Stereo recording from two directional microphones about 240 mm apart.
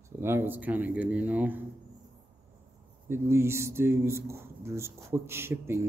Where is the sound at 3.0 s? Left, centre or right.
Centre.